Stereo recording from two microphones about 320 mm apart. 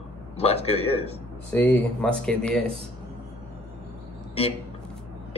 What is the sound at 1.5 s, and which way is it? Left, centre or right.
Speech, centre.